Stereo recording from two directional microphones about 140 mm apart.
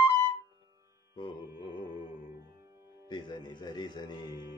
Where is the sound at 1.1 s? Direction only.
35° left (ahead or behind).